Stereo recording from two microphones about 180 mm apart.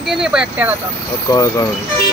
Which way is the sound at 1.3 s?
20° left (ahead or behind).